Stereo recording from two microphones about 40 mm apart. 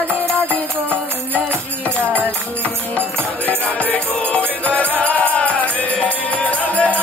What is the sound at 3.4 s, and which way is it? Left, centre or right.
Music, left.